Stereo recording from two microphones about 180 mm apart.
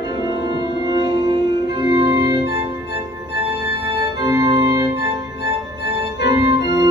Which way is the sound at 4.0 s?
20° right (ahead or behind).